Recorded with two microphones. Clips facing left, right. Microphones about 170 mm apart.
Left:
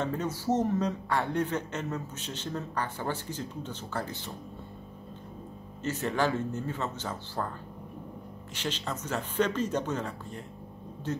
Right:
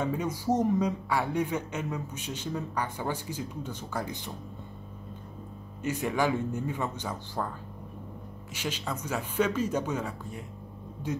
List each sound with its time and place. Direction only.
0.0 s speech: 10° right (ahead or behind)
5.8 s speech: 10° right (ahead or behind)
8.5 s speech: 10° right (ahead or behind)